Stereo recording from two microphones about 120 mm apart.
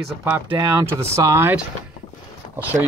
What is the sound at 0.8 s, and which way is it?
Speech, 25° right (ahead or behind).